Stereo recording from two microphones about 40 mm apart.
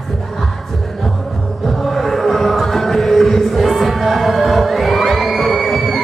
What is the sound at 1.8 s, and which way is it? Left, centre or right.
Music, centre.